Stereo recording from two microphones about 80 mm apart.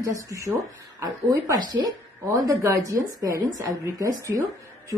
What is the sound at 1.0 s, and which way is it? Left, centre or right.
Speech, right.